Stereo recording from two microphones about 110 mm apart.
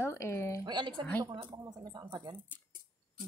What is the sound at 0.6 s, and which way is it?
Speech, 45° right (ahead or behind).